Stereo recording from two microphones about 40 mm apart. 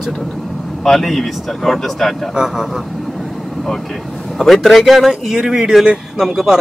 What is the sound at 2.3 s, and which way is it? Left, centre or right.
Speech, centre.